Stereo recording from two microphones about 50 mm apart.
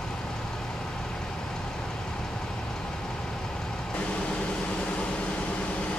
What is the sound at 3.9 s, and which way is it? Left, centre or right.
Vehicle, left.